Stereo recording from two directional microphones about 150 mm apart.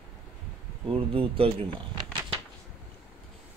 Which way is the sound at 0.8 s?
40° right (ahead or behind).